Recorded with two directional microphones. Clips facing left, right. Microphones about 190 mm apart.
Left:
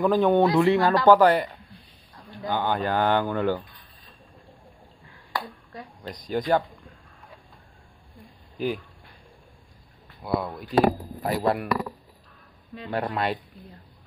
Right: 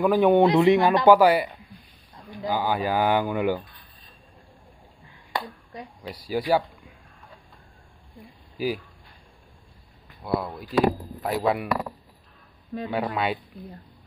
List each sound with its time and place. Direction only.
0.0 s speech: 10° right (ahead or behind)
5.3 s a sound: 20° right (ahead or behind)
6.0 s speech: 5° right (ahead or behind)
8.5 s speech: 5° right (ahead or behind)
10.2 s speech: centre (ahead or behind)
12.8 s speech: centre (ahead or behind)